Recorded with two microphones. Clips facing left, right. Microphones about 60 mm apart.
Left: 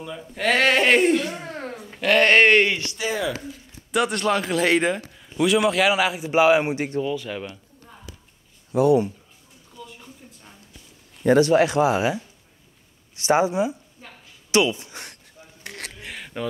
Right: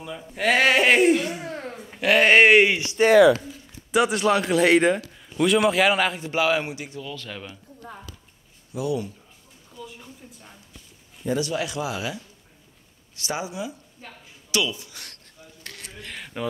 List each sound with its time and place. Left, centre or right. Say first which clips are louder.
0.0 s a man's voice: even; centre
3.1 s speech: right 12 dB; right
3.9 s a man's voice: right 2 dB; centre
6.3 s speech: left 7 dB; left
6.7 s speech: left 9 dB; left
7.1 s speech: left 8 dB; centre
7.8 s a sound: right 7 dB; right
8.7 s speech: left 9 dB; left
9.8 s a sound: right 1 dB; centre
11.2 s speech: left 10 dB; left
13.3 s speech: left 11 dB; left
15.7 s a sound: left 7 dB; centre
16.1 s a sound: even; centre